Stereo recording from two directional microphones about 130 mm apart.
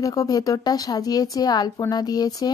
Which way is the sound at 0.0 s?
25° left (ahead or behind).